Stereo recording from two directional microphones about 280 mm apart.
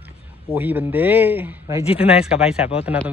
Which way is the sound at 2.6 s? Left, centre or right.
Left.